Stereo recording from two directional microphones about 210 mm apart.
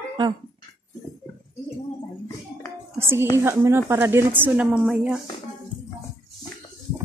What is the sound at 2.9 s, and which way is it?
A woman's voice, 10° right (ahead or behind).